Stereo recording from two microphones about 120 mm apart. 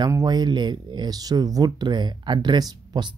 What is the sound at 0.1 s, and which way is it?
Speech, 35° right (ahead or behind).